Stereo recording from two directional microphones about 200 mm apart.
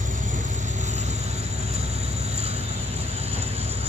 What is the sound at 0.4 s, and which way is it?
Vehicle, 35° right (ahead or behind).